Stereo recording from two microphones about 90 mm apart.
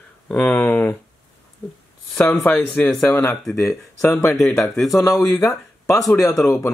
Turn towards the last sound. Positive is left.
turn(degrees=35)  # may be behind; listen again after turning